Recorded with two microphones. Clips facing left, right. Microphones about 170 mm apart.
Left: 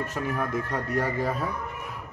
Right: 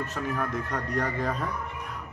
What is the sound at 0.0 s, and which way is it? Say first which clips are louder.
A man's voice: left 1 dB; 10° left (ahead or behind).